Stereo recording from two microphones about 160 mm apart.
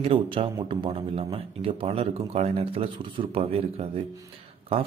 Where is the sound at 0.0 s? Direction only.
35° right (ahead or behind).